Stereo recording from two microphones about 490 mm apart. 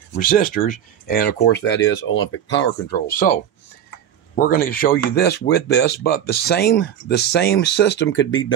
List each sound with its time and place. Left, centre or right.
0.1 s speech: centre
4.4 s speech: centre